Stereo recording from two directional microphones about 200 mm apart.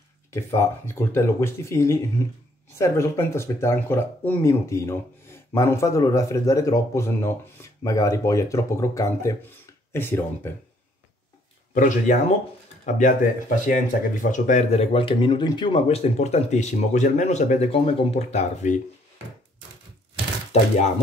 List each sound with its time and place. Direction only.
0.3 s speech: 15° left (ahead or behind)
11.7 s speech: 40° left (ahead or behind)